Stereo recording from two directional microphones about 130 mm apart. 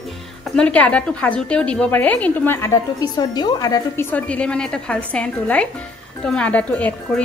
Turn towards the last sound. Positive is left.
turn(degrees=10)  # may be behind; listen again after turning